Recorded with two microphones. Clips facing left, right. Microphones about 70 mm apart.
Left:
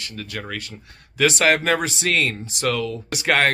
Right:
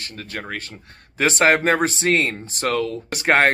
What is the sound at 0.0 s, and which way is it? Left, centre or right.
Speech, right.